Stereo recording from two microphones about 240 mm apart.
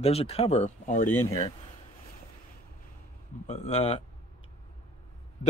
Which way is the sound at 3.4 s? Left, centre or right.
Left.